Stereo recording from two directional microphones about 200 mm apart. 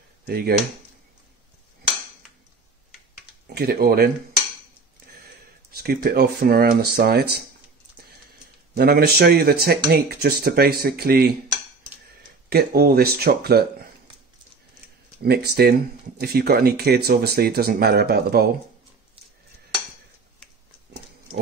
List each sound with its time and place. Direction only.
0.3 s speech: 50° right (ahead or behind)
3.5 s speech: 50° right (ahead or behind)
5.7 s speech: 50° right (ahead or behind)
8.7 s speech: 50° right (ahead or behind)
15.2 s speech: 55° right (ahead or behind)